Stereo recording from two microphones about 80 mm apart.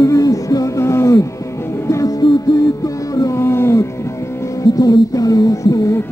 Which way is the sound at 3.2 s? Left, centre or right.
Left.